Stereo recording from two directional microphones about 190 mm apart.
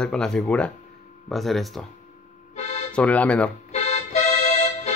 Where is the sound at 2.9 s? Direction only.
5° left (ahead or behind).